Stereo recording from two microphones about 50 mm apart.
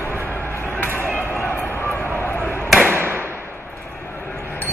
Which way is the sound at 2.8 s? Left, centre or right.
Right.